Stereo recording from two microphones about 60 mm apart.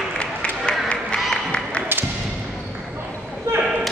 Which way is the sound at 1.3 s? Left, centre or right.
Centre.